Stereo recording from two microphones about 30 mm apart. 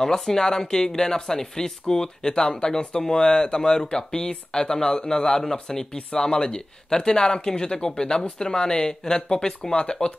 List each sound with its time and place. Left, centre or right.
0.0 s speech: centre